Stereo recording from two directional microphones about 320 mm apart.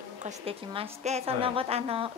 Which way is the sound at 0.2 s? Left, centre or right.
Centre.